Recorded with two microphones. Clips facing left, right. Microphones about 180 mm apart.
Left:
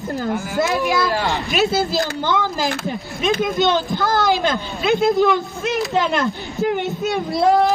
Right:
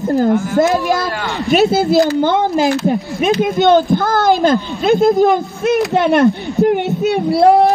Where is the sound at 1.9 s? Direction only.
55° right (ahead or behind).